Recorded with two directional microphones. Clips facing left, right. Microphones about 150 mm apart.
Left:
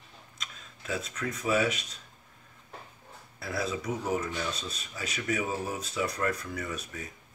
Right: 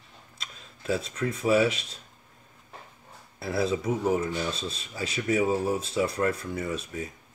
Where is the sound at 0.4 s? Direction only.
30° right (ahead or behind).